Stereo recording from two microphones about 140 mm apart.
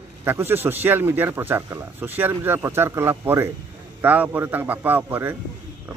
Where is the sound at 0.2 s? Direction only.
15° right (ahead or behind).